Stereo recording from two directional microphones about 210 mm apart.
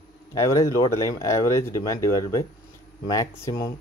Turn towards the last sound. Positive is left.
turn(degrees=15)  # may be behind; listen again after turning